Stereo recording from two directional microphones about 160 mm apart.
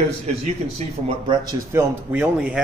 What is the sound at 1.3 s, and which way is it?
Speech, 20° right (ahead or behind).